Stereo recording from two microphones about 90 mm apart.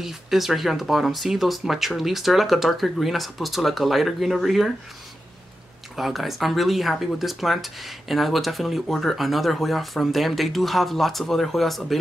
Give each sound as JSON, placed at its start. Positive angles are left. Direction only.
{"t": 0.0, "sound": "speech", "side_deg": -5}
{"t": 5.9, "sound": "speech", "side_deg": 0}